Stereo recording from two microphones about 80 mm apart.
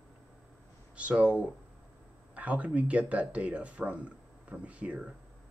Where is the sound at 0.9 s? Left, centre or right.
Centre.